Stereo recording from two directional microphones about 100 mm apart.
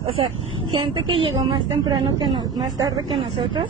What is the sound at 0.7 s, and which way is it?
A woman's voice, 55° right (ahead or behind).